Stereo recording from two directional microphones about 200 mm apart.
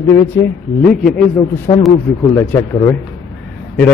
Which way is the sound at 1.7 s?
25° left (ahead or behind).